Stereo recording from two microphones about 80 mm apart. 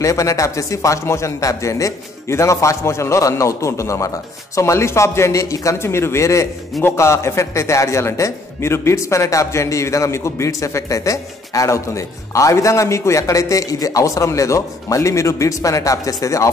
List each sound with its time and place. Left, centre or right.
0.0 s a man's voice: left